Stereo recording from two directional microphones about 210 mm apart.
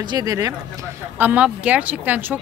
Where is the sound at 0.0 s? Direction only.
20° right (ahead or behind).